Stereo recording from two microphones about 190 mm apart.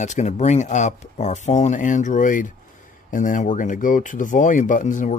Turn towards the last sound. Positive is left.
turn(degrees=40)  # may be behind; listen again after turning